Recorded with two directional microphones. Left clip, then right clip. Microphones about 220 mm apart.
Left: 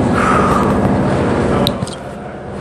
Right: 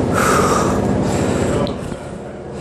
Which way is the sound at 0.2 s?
55° right (ahead or behind).